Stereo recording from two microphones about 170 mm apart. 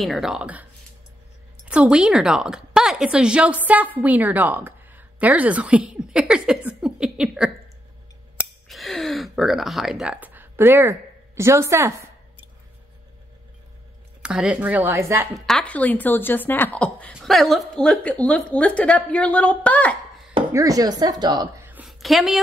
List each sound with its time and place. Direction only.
0.0 s speech: centre (ahead or behind)
1.7 s a woman's voice: 5° right (ahead or behind)
8.6 s a sound: centre (ahead or behind); by 11.9 s 15° right (ahead or behind)
14.2 s speech: 5° right (ahead or behind)
15.3 s speech: centre (ahead or behind)
20.5 s a woman's voice: 20° right (ahead or behind)
21.6 s a sound: 10° right (ahead or behind)
22.0 s speech: centre (ahead or behind)